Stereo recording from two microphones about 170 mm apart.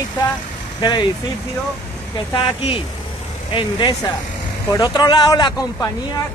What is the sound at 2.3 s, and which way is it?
Speech, 30° left (ahead or behind).